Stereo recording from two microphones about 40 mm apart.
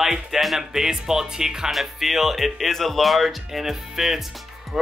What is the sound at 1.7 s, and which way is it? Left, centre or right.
Speech, centre.